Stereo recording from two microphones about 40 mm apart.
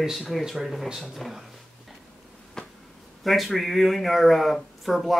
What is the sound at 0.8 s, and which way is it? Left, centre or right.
Speech, centre.